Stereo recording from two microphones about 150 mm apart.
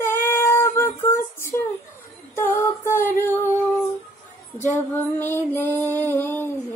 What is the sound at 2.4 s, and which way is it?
Female singing, 15° left (ahead or behind).